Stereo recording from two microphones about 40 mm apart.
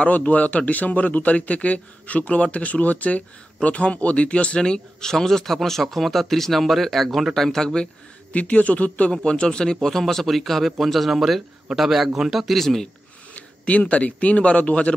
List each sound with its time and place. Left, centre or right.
0.0 s a man's voice: left; by 7.9 s centre
8.3 s a man's voice: left
9.2 s speech: left
9.8 s a man's voice: centre
13.3 s a man's voice: left